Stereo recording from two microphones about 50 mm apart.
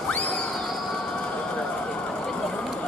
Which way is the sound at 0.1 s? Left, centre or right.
Left.